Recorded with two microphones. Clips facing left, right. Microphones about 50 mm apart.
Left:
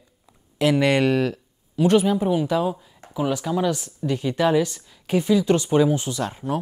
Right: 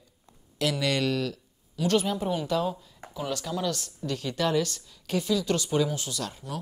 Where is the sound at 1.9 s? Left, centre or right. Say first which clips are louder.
Left 7 dB; centre.